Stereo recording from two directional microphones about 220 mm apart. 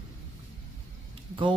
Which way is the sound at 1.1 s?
20° right (ahead or behind).